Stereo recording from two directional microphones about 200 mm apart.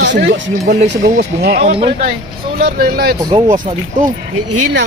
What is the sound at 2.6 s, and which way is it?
Speech, 50° right (ahead or behind).